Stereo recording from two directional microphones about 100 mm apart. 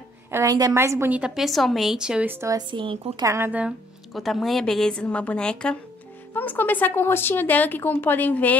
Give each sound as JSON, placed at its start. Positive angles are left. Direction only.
{"t": 0.3, "sound": "a woman's voice", "side_deg": -30}
{"t": 1.1, "sound": "speech", "side_deg": -5}
{"t": 2.2, "sound": "a woman's voice", "side_deg": -20}
{"t": 2.7, "sound": "speech", "side_deg": -55}
{"t": 3.3, "sound": "a woman's voice", "side_deg": -25}
{"t": 4.1, "sound": "a woman's voice", "side_deg": 0}